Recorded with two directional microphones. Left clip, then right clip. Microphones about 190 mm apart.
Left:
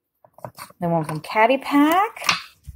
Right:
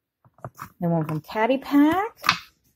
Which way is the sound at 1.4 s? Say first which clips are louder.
Left 4 dB; 15° right (ahead or behind).